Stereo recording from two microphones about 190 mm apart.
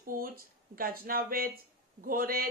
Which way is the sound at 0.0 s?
50° right (ahead or behind).